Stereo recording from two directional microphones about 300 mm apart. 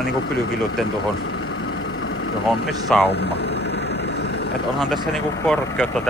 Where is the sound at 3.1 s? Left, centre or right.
Left.